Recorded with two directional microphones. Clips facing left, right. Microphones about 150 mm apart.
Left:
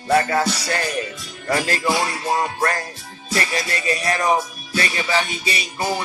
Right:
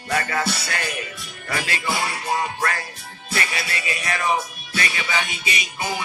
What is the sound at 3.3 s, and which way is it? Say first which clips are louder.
Music: left 4 dB; 40° left (ahead or behind).